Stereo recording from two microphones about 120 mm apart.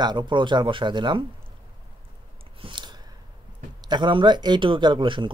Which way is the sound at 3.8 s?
40° right (ahead or behind).